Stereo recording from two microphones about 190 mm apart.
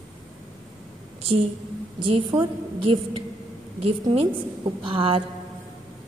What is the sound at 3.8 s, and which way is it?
A woman's voice, 30° right (ahead or behind).